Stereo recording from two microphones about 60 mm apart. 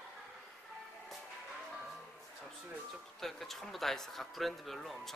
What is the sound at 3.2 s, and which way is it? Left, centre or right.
Speech, centre.